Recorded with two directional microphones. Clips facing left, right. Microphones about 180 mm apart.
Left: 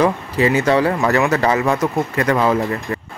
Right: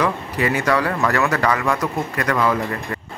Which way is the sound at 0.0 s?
25° left (ahead or behind).